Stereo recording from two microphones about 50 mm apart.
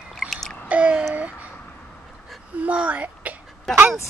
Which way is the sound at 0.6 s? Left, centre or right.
Right.